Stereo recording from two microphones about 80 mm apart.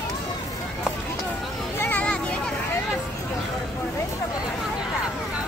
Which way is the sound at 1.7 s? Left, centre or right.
Left.